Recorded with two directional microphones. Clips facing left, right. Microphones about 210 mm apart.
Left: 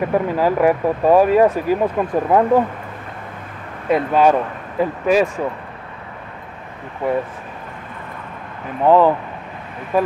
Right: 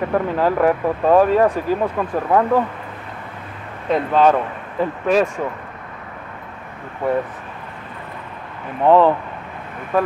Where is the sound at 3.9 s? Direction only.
10° left (ahead or behind).